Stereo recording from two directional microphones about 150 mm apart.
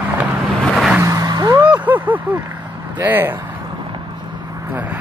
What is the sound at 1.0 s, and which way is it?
Vehicle, 20° right (ahead or behind).